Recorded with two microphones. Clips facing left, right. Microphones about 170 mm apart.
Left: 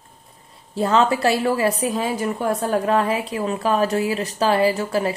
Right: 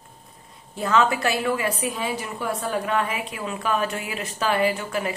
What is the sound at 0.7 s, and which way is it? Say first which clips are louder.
A woman's voice: left 3 dB; 30° left (ahead or behind).